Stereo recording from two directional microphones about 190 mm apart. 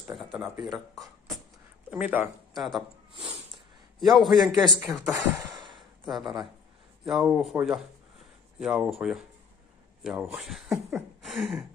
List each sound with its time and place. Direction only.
0.0 s speech: centre (ahead or behind)
1.9 s speech: 5° right (ahead or behind)
3.5 s a sound: centre (ahead or behind)
4.6 s speech: 15° right (ahead or behind)
5.8 s a sound: centre (ahead or behind)
7.1 s speech: 5° right (ahead or behind)